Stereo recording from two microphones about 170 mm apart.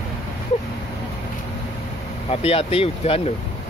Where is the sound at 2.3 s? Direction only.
35° left (ahead or behind).